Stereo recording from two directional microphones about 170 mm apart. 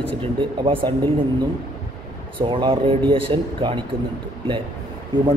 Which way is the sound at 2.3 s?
30° right (ahead or behind).